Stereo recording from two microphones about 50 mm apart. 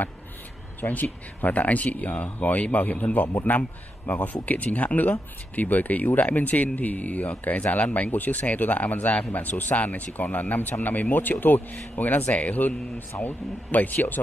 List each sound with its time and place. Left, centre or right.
0.7 s speech: left